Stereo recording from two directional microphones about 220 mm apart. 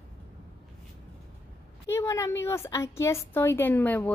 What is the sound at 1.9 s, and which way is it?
A woman's voice, 15° left (ahead or behind).